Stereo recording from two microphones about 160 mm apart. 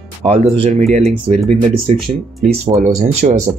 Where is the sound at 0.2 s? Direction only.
40° right (ahead or behind).